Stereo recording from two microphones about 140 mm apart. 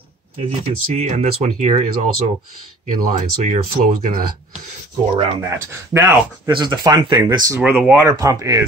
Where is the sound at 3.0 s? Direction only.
75° right (ahead or behind).